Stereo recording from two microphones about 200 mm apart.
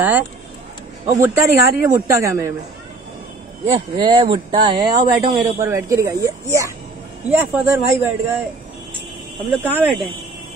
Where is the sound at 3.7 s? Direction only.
25° right (ahead or behind).